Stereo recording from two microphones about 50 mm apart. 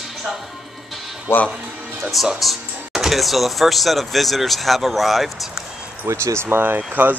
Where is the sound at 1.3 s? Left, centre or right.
Left.